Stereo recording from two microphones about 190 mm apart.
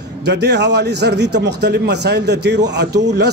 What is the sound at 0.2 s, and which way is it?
A man's voice, 60° right (ahead or behind).